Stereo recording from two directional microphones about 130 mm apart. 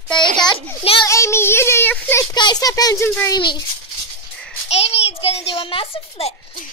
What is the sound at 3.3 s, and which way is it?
Speech, 35° left (ahead or behind).